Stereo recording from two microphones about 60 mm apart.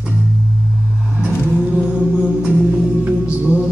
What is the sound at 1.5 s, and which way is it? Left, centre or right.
Music, centre.